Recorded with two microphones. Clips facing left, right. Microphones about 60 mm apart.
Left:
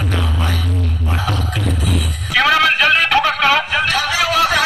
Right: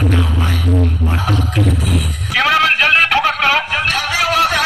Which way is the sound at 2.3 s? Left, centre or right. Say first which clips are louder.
Even; centre.